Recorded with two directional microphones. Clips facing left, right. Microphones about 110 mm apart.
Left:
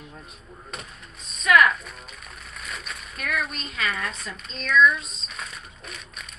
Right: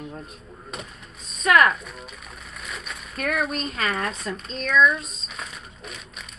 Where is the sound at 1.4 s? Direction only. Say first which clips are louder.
Right 1 dB; 40° right (ahead or behind).